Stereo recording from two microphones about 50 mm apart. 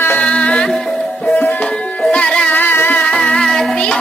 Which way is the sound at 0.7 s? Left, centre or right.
Centre.